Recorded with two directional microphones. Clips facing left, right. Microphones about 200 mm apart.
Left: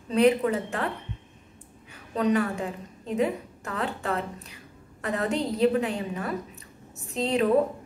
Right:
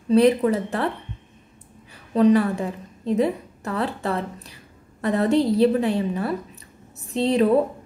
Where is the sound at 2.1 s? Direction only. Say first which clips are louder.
Right 7 dB; 35° right (ahead or behind).